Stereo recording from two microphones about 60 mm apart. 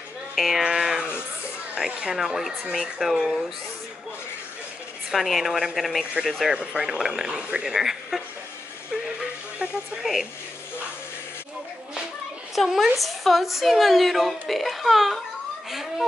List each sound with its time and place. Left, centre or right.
0.4 s a woman's voice: centre
5.1 s a woman's voice: centre
6.5 s speech: centre
7.7 s a woman's voice: centre
10.0 s speech: centre
12.5 s a woman's voice: centre